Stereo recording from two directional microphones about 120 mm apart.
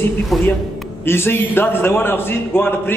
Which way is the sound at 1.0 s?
20° left (ahead or behind).